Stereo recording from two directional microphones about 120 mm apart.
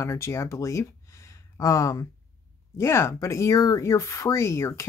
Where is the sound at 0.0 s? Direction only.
25° left (ahead or behind).